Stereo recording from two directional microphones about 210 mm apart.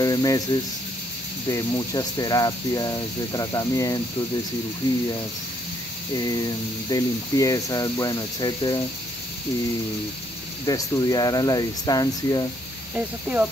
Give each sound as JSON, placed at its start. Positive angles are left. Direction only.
{"t": 0.0, "sound": "speech", "side_deg": 15}
{"t": 6.9, "sound": "speech", "side_deg": 15}
{"t": 10.7, "sound": "speech", "side_deg": 15}
{"t": 12.9, "sound": "speech", "side_deg": -5}